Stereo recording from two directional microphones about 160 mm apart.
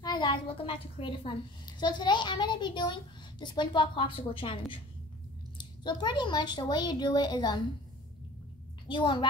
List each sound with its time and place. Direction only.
0.0 s a woman's voice: 25° left (ahead or behind)
8.8 s a child's voice: 30° left (ahead or behind)